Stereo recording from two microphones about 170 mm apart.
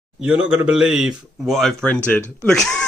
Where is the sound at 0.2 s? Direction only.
10° right (ahead or behind).